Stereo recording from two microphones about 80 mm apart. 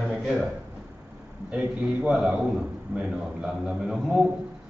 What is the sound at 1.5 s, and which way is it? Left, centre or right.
A man's voice, centre.